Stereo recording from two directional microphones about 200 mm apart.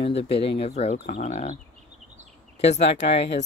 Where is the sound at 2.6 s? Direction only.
30° left (ahead or behind).